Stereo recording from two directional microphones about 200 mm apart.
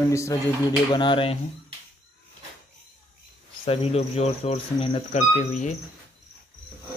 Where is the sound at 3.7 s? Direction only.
30° left (ahead or behind).